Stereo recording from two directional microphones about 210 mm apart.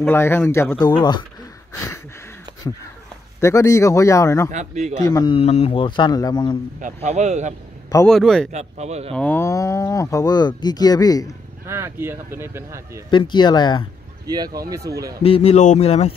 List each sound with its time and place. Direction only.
0.0 s a man's voice: 10° left (ahead or behind)
3.3 s speech: 15° left (ahead or behind)
4.5 s speech: 35° right (ahead or behind)
5.0 s a man's voice: 20° left (ahead or behind)
6.8 s speech: 35° right (ahead or behind)
8.1 s speech: centre (ahead or behind)
8.5 s speech: 30° right (ahead or behind)
9.1 s speech: 5° left (ahead or behind)
11.6 s a man's voice: 15° right (ahead or behind)
13.1 s a man's voice: 20° left (ahead or behind)
14.2 s a man's voice: 20° right (ahead or behind)
15.2 s a man's voice: 30° left (ahead or behind)